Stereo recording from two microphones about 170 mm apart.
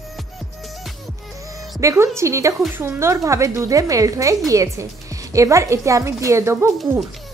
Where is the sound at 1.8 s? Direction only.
15° right (ahead or behind).